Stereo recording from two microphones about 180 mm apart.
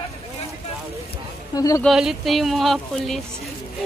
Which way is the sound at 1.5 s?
20° left (ahead or behind).